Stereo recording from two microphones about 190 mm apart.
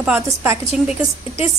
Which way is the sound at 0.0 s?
10° right (ahead or behind).